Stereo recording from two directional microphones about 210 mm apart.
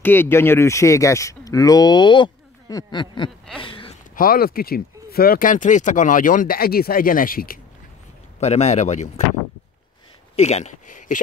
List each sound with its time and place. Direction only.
0.0 s speech: 10° left (ahead or behind)
3.5 s a sound: 25° left (ahead or behind)
4.1 s speech: 45° left (ahead or behind)
8.4 s speech: 30° left (ahead or behind)
10.3 s speech: 30° left (ahead or behind)